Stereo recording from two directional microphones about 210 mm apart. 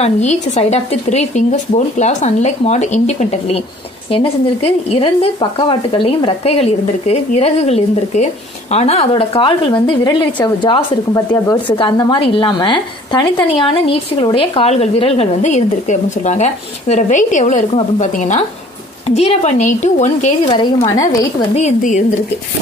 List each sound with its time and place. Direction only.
0.0 s speech: 30° left (ahead or behind)
20.5 s a woman's voice: 15° left (ahead or behind)
21.5 s speech: 35° left (ahead or behind)